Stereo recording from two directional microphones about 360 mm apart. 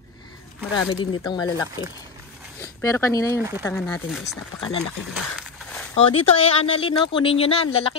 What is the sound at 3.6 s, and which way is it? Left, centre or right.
Speech, centre.